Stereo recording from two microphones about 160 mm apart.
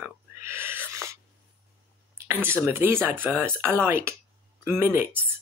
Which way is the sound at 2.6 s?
15° right (ahead or behind).